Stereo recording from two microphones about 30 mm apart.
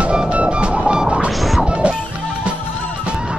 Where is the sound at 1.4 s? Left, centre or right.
Centre.